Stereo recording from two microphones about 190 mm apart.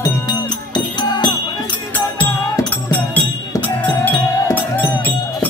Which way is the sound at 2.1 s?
10° left (ahead or behind).